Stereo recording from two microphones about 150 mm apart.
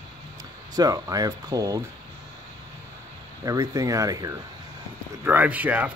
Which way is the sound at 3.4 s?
25° right (ahead or behind).